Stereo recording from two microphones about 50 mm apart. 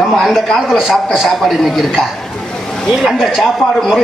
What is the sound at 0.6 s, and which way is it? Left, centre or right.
A man's voice, centre.